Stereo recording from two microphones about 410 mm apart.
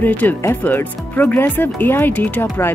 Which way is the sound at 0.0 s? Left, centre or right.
Centre.